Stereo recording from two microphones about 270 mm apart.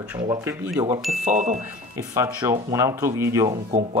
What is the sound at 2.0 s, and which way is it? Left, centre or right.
Speech, centre.